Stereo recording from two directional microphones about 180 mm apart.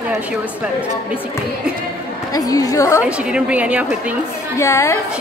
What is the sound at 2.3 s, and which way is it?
Speech, 20° left (ahead or behind).